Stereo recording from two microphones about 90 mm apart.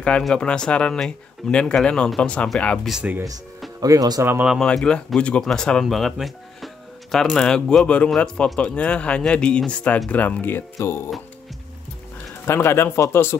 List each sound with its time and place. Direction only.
0.2 s speech: 10° left (ahead or behind)
3.8 s speech: 40° right (ahead or behind)
4.2 s speech: 25° right (ahead or behind)
4.6 s speech: 5° left (ahead or behind)
10.8 s speech: 30° left (ahead or behind)
12.4 s speech: 30° left (ahead or behind)